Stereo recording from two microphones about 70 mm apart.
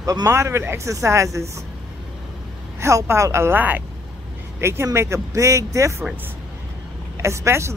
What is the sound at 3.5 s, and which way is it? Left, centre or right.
Speech, right.